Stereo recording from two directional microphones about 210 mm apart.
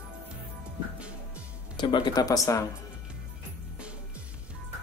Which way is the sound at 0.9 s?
5° right (ahead or behind).